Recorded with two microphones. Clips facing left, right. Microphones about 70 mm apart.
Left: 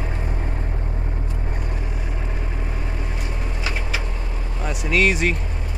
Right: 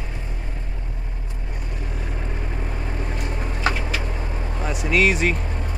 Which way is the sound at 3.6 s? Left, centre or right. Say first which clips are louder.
Right 6 dB; right.